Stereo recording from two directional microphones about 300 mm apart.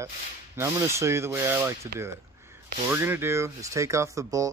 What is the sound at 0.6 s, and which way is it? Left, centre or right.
Speech, centre.